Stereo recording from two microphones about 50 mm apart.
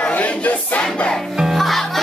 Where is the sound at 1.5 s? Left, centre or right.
Centre.